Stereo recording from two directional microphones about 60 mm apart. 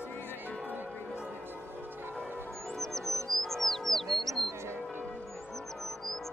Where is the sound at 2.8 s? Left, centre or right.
Centre.